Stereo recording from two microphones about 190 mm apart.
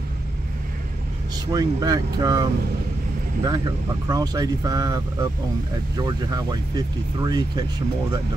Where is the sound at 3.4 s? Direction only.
20° right (ahead or behind).